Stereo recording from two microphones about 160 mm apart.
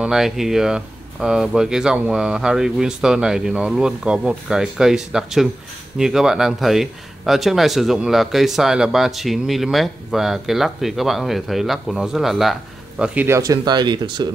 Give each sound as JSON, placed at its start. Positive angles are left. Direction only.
{"t": 0.0, "sound": "speech", "side_deg": 0}
{"t": 13.4, "sound": "speech", "side_deg": -25}